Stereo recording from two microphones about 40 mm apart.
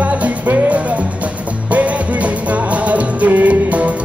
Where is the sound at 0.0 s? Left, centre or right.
Right.